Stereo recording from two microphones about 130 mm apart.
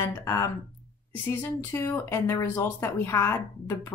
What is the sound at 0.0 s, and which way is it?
Speech, 25° left (ahead or behind).